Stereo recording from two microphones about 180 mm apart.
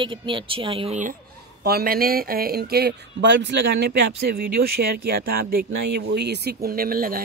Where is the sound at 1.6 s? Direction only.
60° right (ahead or behind).